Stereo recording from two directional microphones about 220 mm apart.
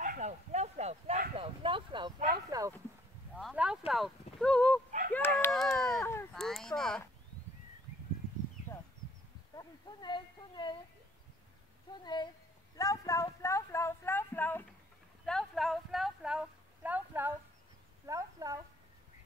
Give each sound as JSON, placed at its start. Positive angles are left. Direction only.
{"t": 0.0, "sound": "bow-wow", "side_deg": -35}
{"t": 1.3, "sound": "a sound", "side_deg": -25}
{"t": 2.2, "sound": "speech", "side_deg": -15}
{"t": 3.3, "sound": "speech", "side_deg": -5}
{"t": 5.1, "sound": "a sound", "side_deg": 10}
{"t": 9.6, "sound": "speech", "side_deg": 20}
{"t": 12.0, "sound": "speech", "side_deg": 20}
{"t": 15.2, "sound": "a sound", "side_deg": 0}
{"t": 18.0, "sound": "speech", "side_deg": -15}